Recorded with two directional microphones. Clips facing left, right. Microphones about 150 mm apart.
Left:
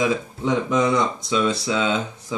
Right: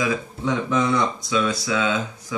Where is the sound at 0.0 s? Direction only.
20° left (ahead or behind).